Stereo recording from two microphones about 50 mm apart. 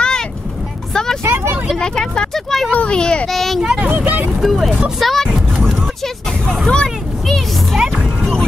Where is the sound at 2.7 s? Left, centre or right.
Left.